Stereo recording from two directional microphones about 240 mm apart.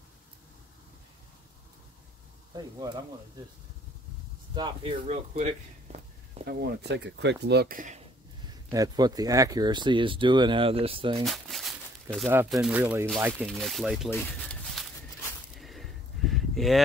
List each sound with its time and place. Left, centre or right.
2.5 s speech: centre
4.6 s speech: centre
6.6 s speech: right
8.6 s speech: centre
11.2 s speech: centre
14.1 s a sound: centre